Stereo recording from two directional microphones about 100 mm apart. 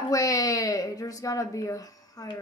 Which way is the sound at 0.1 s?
35° left (ahead or behind).